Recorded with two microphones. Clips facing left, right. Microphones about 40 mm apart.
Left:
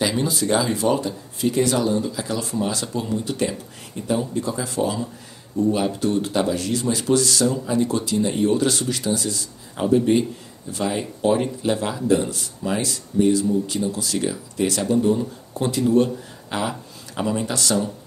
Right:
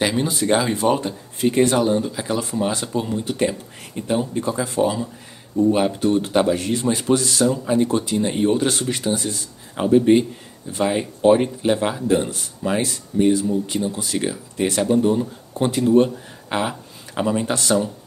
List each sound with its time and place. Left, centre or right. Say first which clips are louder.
0.2 s a man's voice: right 2 dB; right